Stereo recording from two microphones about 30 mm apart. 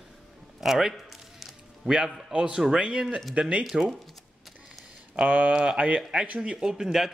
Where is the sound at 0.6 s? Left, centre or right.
Centre.